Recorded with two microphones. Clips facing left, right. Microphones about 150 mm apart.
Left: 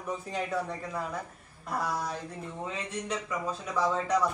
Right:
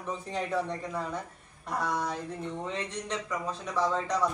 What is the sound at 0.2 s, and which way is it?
Speech, 5° left (ahead or behind).